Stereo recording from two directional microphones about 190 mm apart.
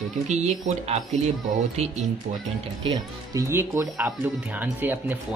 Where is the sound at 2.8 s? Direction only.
20° right (ahead or behind).